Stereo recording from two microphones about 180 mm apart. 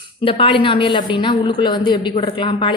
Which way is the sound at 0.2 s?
30° left (ahead or behind).